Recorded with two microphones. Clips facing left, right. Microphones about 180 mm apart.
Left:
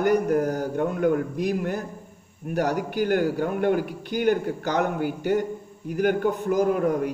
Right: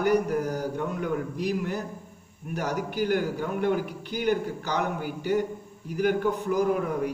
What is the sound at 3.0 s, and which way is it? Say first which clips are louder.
A man's voice: left 4 dB; 55° left (ahead or behind).